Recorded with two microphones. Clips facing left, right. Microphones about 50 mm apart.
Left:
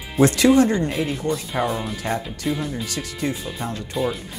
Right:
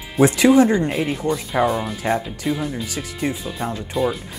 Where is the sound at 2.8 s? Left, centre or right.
Centre.